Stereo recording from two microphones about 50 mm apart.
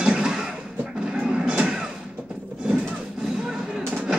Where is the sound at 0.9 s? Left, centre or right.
Right.